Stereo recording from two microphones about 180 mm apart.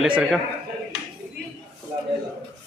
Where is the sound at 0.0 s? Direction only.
5° right (ahead or behind).